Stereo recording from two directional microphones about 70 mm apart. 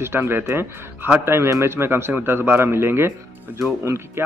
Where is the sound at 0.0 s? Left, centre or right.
Right.